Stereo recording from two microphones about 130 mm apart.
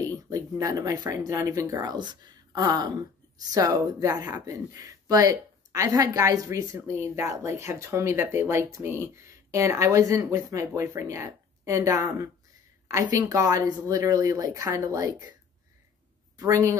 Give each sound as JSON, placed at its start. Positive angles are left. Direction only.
{"t": 0.0, "sound": "speech", "side_deg": -25}
{"t": 16.3, "sound": "speech", "side_deg": -25}